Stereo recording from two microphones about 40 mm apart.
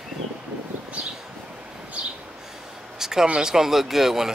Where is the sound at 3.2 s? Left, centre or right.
Right.